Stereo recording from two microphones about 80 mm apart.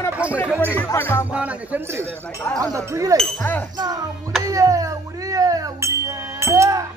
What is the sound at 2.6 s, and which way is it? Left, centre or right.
Speech, right.